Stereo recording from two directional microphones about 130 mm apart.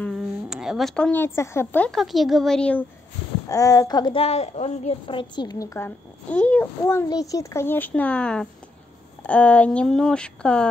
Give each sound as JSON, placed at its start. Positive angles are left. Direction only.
{"t": 0.2, "sound": "speech", "side_deg": -5}
{"t": 1.9, "sound": "speech", "side_deg": 0}
{"t": 3.4, "sound": "speech", "side_deg": 25}
{"t": 4.2, "sound": "a woman's voice", "side_deg": 55}
{"t": 5.9, "sound": "speech", "side_deg": 10}
{"t": 7.1, "sound": "speech", "side_deg": 25}